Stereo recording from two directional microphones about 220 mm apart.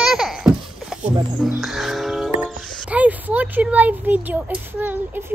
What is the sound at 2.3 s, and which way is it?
Speech, centre (ahead or behind).